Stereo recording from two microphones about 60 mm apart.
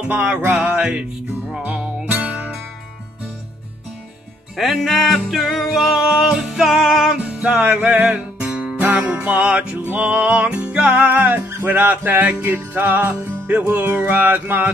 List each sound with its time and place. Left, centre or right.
0.0 s music: right
2.2 s music: right
4.6 s music: centre
7.8 s music: right